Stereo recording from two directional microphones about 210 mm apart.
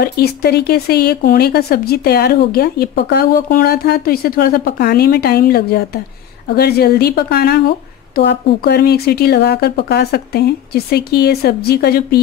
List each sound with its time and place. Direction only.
0.0 s speech: 50° left (ahead or behind)